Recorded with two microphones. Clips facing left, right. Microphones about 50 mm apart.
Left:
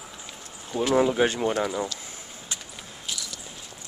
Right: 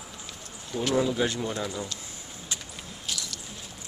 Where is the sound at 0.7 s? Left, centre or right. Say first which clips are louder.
Left 4 dB; left.